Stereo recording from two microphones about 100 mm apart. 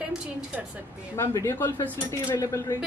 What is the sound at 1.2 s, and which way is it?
Speech, 25° left (ahead or behind).